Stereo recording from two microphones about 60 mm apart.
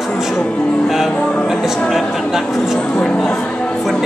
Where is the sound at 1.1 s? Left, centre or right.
Centre.